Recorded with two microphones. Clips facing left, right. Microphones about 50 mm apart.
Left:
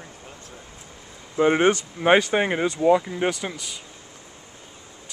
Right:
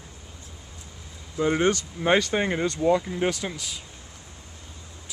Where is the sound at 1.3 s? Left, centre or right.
Left; by 3.8 s centre.